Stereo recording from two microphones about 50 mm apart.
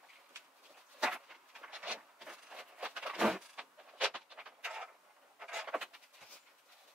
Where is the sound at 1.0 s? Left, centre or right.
Centre.